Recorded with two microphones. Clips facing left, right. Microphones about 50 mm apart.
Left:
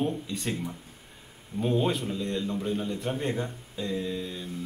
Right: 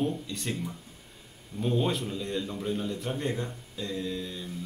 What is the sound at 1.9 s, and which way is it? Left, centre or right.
A man's voice, centre.